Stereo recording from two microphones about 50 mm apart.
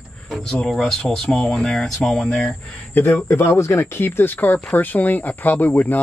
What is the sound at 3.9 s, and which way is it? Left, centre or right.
Speech, left.